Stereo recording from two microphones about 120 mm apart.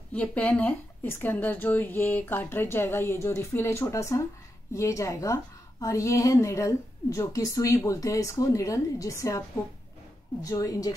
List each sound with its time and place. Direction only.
0.1 s a woman's voice: 10° left (ahead or behind); by 9.4 s 25° left (ahead or behind)
10.4 s a woman's voice: 30° left (ahead or behind)